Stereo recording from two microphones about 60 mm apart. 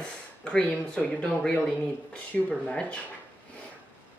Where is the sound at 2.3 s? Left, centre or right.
Centre.